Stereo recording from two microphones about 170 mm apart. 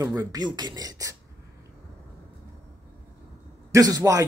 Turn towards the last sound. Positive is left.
turn(degrees=-20)  # may be behind; listen again after turning